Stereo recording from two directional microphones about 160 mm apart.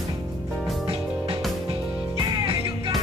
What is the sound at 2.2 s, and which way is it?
Music, 30° right (ahead or behind).